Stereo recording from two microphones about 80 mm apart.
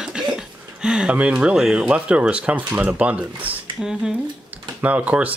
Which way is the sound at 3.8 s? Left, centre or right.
Centre.